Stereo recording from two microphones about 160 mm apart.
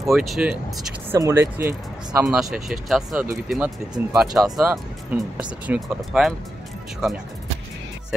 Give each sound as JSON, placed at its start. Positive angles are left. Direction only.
{"t": 0.0, "sound": "speech", "side_deg": 0}
{"t": 1.1, "sound": "speech", "side_deg": -15}
{"t": 2.2, "sound": "speech", "side_deg": 0}